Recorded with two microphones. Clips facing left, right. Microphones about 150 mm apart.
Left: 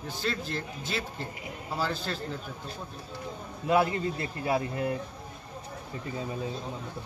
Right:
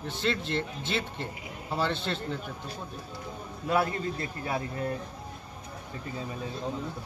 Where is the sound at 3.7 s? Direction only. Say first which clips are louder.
Left 2 dB; 20° left (ahead or behind).